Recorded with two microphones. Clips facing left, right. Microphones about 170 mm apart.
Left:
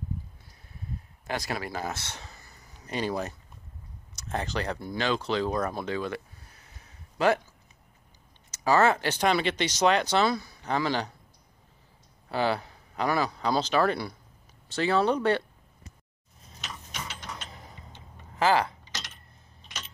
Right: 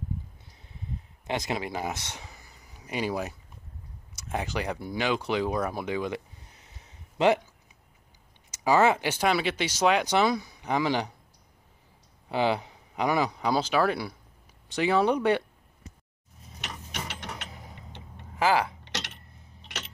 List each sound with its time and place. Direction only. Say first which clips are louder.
1.2 s speech: right 2 dB; 20° right (ahead or behind)
8.5 s speech: right 1 dB; 15° right (ahead or behind)
12.3 s speech: right 1 dB; 15° right (ahead or behind)
16.6 s tick-tock: right 2 dB; 65° right (ahead or behind)
17.5 s a sound: right 1 dB; 10° right (ahead or behind)
18.9 s a sound: right 5 dB; 70° right (ahead or behind)